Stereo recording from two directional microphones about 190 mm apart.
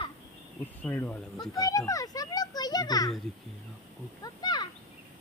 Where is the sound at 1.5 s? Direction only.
20° left (ahead or behind).